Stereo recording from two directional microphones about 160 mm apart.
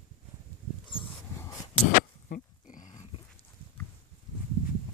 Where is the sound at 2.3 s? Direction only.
55° left (ahead or behind).